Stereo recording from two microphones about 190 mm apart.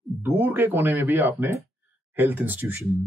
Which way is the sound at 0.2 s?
10° right (ahead or behind).